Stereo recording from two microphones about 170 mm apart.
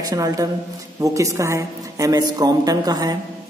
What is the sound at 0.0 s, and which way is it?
A man's voice, 20° right (ahead or behind).